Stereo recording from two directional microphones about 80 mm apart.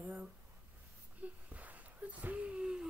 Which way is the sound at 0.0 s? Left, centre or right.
Right.